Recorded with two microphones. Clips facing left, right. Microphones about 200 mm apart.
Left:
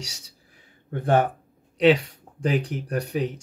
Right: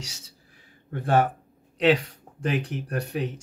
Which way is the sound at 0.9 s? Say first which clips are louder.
Left 1 dB; 20° left (ahead or behind).